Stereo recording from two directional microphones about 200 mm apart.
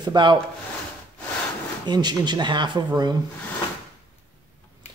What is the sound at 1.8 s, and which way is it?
Speech, 20° right (ahead or behind).